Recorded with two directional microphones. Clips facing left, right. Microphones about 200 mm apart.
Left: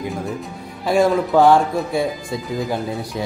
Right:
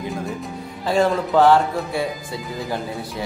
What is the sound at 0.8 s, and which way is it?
Speech, 10° left (ahead or behind).